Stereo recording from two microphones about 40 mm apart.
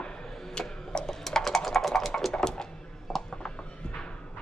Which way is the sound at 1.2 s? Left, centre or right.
Centre.